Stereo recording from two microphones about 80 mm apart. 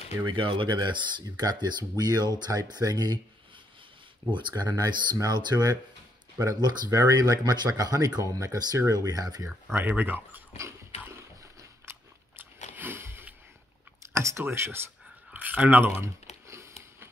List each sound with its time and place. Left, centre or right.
0.3 s speech: right
1.3 s speech: right
4.3 s speech: right
9.8 s speech: right
10.5 s horse: right
11.8 s biting: right
14.1 s speech: right
15.3 s a sound: right